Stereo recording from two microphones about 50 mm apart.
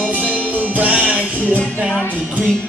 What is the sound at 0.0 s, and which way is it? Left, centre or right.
Music, right.